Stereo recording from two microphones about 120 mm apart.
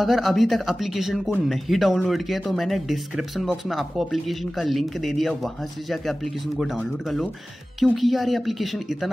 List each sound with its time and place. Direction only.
0.0 s speech: centre (ahead or behind)